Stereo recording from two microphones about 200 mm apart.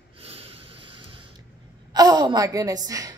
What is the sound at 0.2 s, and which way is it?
Snort, 30° right (ahead or behind).